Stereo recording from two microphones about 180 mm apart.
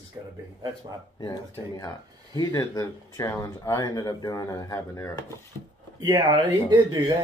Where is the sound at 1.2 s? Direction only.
20° left (ahead or behind).